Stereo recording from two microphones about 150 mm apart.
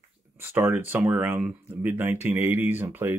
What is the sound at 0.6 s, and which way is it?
Speech, 15° right (ahead or behind).